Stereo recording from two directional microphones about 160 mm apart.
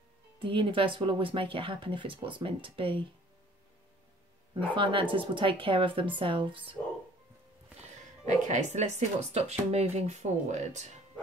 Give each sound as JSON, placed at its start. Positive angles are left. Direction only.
{"t": 0.4, "sound": "speech", "side_deg": -30}
{"t": 4.6, "sound": "speech", "side_deg": -30}
{"t": 8.3, "sound": "speech", "side_deg": -50}